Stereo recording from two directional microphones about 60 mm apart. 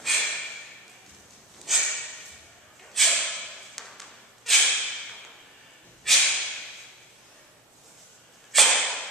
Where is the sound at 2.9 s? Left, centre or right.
Centre.